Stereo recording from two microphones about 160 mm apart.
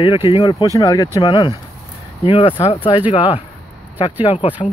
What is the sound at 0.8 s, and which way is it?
Speech, 20° left (ahead or behind).